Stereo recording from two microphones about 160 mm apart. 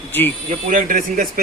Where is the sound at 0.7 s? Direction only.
55° right (ahead or behind).